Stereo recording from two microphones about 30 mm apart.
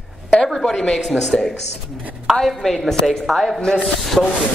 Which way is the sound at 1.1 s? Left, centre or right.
Centre.